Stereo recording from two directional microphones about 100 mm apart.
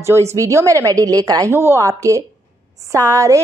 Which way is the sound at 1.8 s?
35° right (ahead or behind).